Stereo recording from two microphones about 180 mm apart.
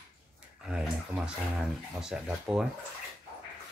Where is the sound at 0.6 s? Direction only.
5° right (ahead or behind).